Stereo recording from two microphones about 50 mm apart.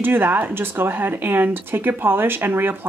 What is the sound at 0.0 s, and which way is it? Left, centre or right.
Speech, right.